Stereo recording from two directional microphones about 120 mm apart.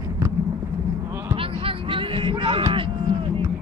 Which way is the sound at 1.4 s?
50° right (ahead or behind).